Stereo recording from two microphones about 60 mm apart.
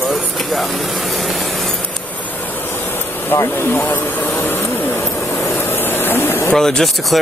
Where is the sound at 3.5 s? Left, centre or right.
Left.